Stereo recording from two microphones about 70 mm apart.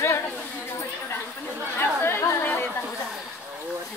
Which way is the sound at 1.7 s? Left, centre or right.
Left.